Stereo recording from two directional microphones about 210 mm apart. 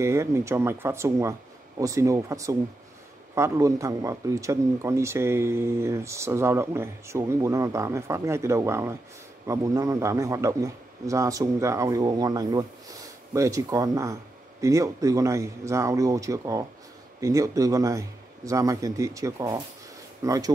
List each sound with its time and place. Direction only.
0.0 s speech: 15° right (ahead or behind)